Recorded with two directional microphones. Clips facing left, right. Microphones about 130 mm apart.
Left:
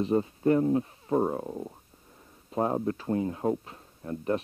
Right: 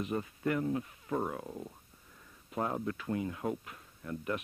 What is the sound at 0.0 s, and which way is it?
Speech, 30° left (ahead or behind).